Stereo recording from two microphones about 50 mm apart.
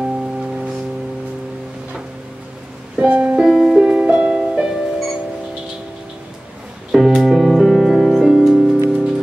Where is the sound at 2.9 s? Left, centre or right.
Right.